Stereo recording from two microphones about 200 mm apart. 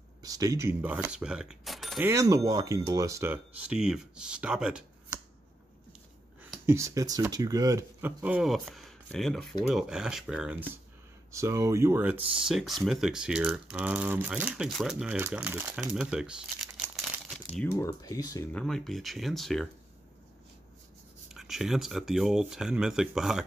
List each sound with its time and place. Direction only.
0.2 s speech: 20° right (ahead or behind); by 2.0 s centre (ahead or behind)
2.0 s speech: 15° right (ahead or behind)
6.4 s speech: 10° right (ahead or behind)
11.3 s speech: 15° right (ahead or behind)
17.6 s speech: 15° left (ahead or behind)
18.5 s speech: 5° left (ahead or behind)
21.3 s speech: centre (ahead or behind)